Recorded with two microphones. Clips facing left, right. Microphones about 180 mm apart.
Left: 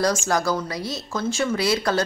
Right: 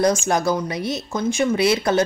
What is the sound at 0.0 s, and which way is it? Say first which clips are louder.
Speech: right 3 dB; 20° right (ahead or behind).